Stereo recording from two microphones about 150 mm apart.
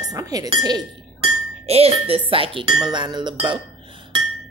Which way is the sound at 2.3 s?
35° right (ahead or behind).